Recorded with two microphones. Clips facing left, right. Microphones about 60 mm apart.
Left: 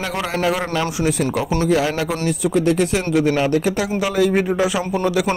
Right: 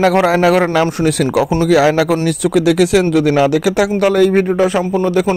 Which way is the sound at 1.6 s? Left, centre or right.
Right.